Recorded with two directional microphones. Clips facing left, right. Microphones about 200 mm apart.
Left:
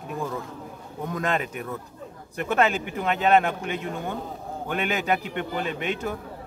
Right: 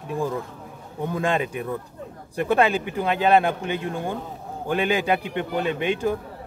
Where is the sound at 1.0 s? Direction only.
30° right (ahead or behind).